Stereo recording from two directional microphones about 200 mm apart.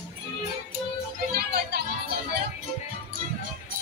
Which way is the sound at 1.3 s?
50° right (ahead or behind).